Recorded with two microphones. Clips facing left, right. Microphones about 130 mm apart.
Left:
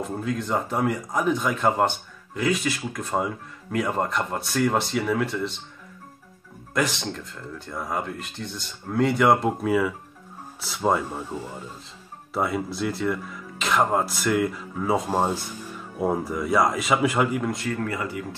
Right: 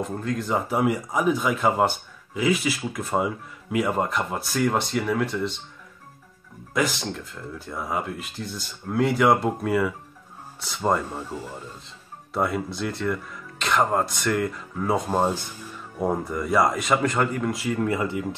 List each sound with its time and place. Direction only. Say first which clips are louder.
0.0 s speech: even; centre (ahead or behind)
6.7 s speech: right 1 dB; centre (ahead or behind)
17.8 s speech: right 4 dB; 25° right (ahead or behind)